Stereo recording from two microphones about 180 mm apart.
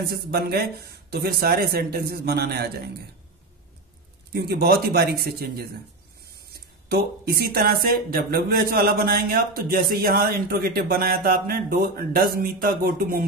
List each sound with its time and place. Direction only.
0.0 s speech: 60° right (ahead or behind)
4.3 s speech: 60° right (ahead or behind)
6.9 s speech: 60° right (ahead or behind)